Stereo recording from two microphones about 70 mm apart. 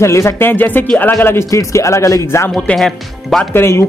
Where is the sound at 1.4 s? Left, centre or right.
Left.